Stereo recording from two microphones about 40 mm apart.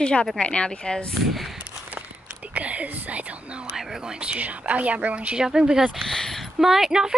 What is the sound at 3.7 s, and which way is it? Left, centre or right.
Speech, centre.